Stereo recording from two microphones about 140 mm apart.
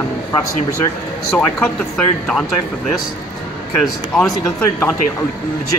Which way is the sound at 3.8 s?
5° left (ahead or behind).